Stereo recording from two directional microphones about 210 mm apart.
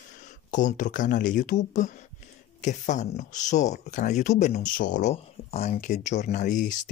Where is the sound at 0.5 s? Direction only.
35° left (ahead or behind).